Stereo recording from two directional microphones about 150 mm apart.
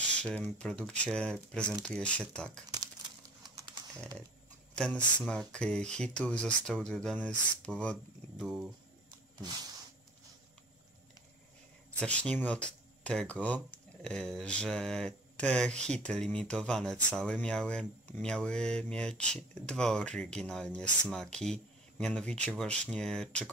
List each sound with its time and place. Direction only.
0.2 s speech: 5° left (ahead or behind)
3.4 s a sound: 30° right (ahead or behind)
4.7 s speech: 5° left (ahead or behind)
12.0 s speech: 5° left (ahead or behind)